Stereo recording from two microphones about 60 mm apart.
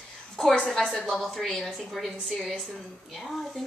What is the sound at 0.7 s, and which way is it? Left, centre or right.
A woman's voice, centre.